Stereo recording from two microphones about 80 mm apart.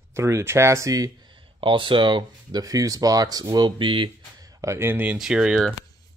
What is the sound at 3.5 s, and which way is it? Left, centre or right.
Speech, right.